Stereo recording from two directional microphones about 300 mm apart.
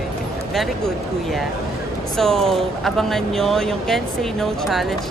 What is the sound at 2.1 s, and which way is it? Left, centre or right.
Speech, centre.